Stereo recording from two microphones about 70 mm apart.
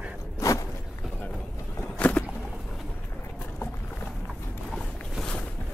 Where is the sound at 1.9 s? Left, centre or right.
Centre.